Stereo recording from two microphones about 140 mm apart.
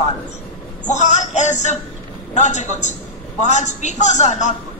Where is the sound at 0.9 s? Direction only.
60° left (ahead or behind).